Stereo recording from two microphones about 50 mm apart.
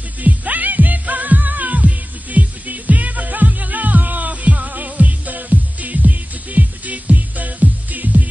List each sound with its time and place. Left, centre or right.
0.2 s music: right